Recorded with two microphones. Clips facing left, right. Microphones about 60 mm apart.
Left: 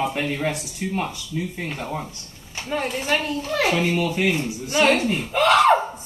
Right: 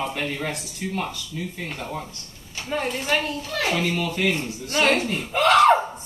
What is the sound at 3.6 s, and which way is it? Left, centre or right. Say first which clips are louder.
Speech: left 3 dB; centre.